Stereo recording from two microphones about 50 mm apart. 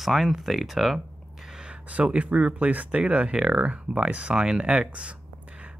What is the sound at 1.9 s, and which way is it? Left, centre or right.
Speech, right.